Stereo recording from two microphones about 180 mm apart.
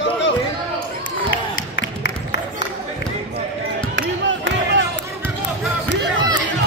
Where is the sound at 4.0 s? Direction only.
90° right.